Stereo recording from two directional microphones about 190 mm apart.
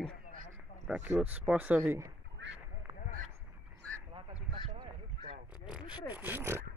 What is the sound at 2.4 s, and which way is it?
Duck, 70° right (ahead or behind).